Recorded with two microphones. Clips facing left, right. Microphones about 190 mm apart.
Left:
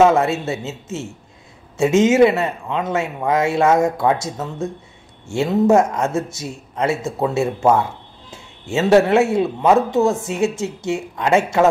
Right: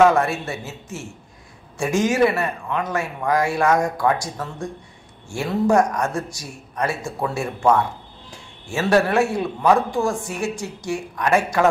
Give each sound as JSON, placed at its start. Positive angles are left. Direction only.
{"t": 0.0, "sound": "speech", "side_deg": 25}